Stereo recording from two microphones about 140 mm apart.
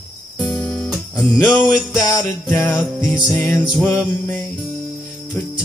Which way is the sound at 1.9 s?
25° left (ahead or behind).